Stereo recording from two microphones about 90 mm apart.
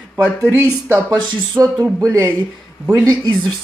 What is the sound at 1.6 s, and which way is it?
Speech, 40° right (ahead or behind).